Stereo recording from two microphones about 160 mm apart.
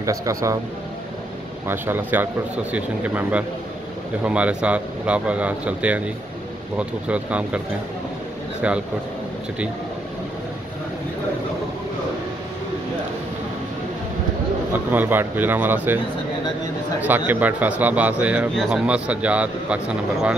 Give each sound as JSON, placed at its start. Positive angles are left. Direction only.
{"t": 0.0, "sound": "speech", "side_deg": -20}
{"t": 1.7, "sound": "speech", "side_deg": -10}
{"t": 8.6, "sound": "speech", "side_deg": -10}
{"t": 14.7, "sound": "speech", "side_deg": -10}
{"t": 17.3, "sound": "speech", "side_deg": -10}